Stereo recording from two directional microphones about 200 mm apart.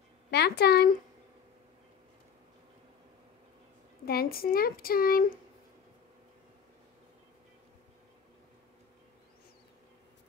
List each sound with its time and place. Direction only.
0.3 s a woman's voice: 55° left (ahead or behind)
4.0 s speech: 50° left (ahead or behind)